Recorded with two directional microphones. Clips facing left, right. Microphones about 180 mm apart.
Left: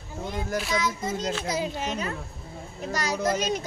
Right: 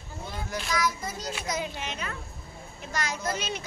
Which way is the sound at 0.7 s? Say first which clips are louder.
Right 1 dB; 25° left (ahead or behind).